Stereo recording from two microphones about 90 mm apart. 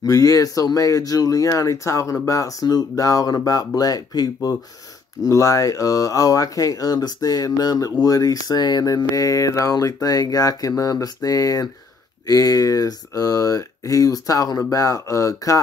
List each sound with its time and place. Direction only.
0.0 s speech: 40° left (ahead or behind)